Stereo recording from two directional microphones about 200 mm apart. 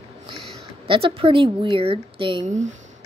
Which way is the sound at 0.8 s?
25° right (ahead or behind).